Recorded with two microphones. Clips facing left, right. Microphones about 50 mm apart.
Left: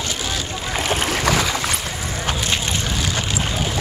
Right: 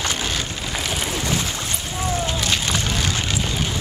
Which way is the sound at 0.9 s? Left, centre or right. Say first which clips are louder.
Left 6 dB; left.